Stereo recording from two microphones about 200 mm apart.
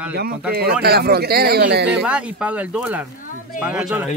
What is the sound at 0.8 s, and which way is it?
Speech, 50° right (ahead or behind).